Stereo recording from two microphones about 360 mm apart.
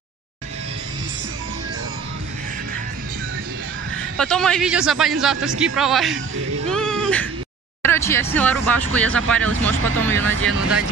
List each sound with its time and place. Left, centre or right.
4.2 s speech: centre
6.7 s a sound: centre
7.8 s speech: centre
8.9 s speech: right
9.3 s speech: centre